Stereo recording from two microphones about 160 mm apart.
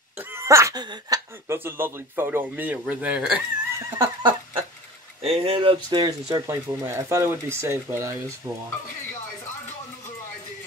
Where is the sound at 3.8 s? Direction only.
15° right (ahead or behind).